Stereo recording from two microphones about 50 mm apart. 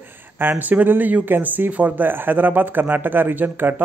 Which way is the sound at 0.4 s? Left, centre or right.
Right.